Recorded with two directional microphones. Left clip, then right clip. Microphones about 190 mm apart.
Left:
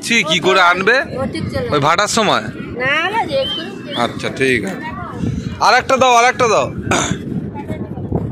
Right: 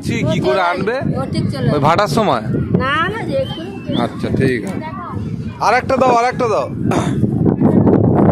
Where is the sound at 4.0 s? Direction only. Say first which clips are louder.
Left 1 dB; 5° right (ahead or behind).